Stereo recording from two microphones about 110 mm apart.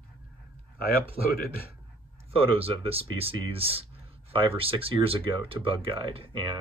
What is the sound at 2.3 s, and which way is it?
Speech, 60° right (ahead or behind).